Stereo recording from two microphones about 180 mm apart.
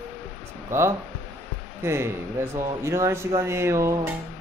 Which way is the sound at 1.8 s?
15° right (ahead or behind).